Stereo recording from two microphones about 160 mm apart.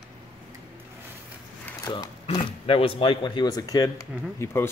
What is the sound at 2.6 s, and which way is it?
Speech, 35° left (ahead or behind).